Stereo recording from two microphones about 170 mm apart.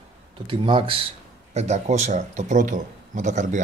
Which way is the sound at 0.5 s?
30° right (ahead or behind).